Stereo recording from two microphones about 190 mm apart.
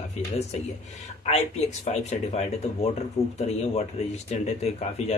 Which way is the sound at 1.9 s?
35° left (ahead or behind).